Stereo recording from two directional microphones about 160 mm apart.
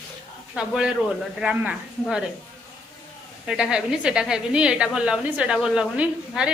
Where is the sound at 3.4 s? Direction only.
5° right (ahead or behind).